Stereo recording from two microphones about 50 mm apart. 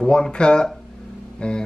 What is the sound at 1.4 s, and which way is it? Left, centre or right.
Music, centre.